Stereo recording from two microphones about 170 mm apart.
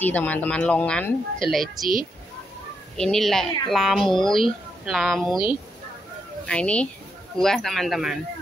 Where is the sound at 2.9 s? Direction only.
5° left (ahead or behind).